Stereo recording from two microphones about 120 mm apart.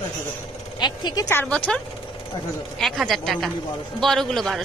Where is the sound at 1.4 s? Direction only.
10° left (ahead or behind).